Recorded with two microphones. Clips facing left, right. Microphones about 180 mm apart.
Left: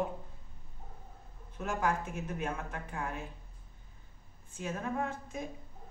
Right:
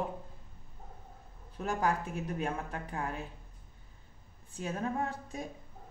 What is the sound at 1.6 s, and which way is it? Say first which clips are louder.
A woman's voice: right 1 dB; 35° right (ahead or behind).